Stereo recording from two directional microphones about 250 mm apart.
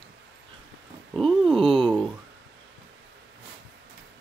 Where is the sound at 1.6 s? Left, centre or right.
Right.